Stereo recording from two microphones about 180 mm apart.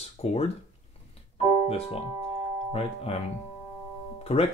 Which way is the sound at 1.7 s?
35° left (ahead or behind).